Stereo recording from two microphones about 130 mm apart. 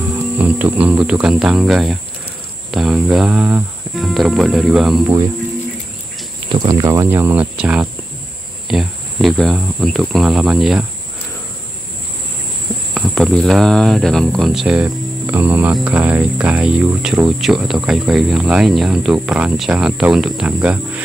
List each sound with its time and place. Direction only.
0.4 s cricket: 10° right (ahead or behind)
3.9 s speech: centre (ahead or behind)
6.5 s speech: 30° right (ahead or behind)
7.1 s cricket: 15° right (ahead or behind)
8.6 s speech: centre (ahead or behind)
12.9 s speech: centre (ahead or behind)
15.2 s cricket: 15° right (ahead or behind)
17.4 s speech: centre (ahead or behind)